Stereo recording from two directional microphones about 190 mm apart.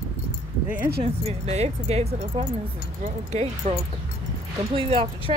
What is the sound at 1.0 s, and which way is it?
Speech, 30° right (ahead or behind).